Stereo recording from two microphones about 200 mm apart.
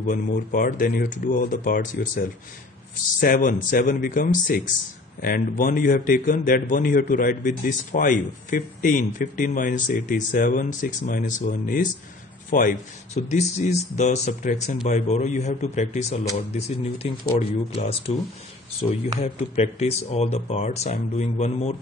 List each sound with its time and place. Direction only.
0.0 s a man's voice: 40° left (ahead or behind)
3.2 s a man's voice: 45° left (ahead or behind)
19.1 s a man's voice: 30° left (ahead or behind)